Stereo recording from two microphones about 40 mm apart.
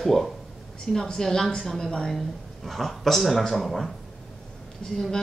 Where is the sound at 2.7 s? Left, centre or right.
Centre.